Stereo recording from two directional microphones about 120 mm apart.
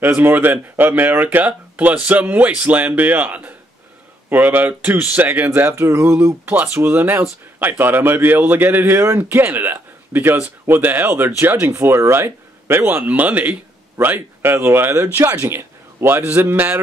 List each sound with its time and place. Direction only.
0.0 s a man's voice: 15° right (ahead or behind)